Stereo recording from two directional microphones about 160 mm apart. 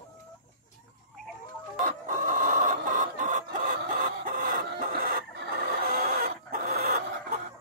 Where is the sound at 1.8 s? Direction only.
60° right (ahead or behind).